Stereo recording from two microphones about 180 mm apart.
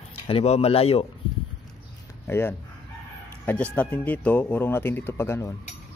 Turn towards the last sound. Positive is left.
turn(degrees=15)  # may be behind; listen again after turning